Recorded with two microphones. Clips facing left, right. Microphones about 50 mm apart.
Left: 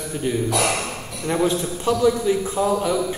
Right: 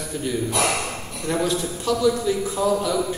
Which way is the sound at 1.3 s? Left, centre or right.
Left.